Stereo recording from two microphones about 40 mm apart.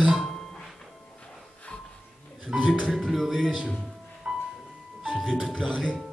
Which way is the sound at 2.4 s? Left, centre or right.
Centre.